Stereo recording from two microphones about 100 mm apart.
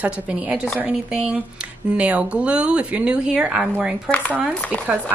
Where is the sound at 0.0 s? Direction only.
10° right (ahead or behind).